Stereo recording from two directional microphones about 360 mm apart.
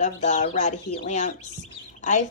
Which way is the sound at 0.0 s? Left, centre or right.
Centre.